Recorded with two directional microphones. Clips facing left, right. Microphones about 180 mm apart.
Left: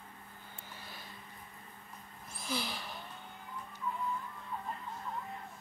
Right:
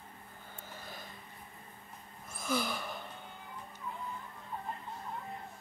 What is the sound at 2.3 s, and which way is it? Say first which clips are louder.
Sigh: right 5 dB; 50° right (ahead or behind).